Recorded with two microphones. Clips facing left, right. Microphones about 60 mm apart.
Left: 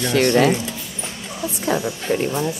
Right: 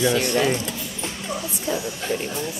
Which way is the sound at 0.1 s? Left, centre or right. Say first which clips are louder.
Left 5 dB; left.